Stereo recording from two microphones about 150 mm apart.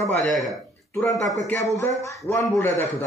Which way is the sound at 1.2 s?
Centre (ahead or behind).